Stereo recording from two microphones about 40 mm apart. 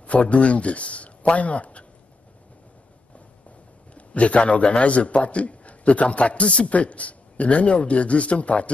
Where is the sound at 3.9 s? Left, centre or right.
Left.